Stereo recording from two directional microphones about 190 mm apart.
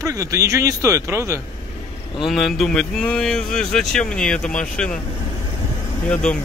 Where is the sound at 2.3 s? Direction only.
Centre (ahead or behind).